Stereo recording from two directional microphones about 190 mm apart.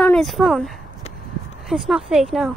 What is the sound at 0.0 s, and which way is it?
Speech, 5° left (ahead or behind).